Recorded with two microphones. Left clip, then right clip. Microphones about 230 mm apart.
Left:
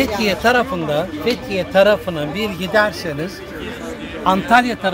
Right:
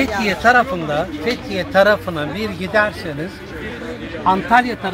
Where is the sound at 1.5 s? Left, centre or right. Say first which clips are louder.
Even; left.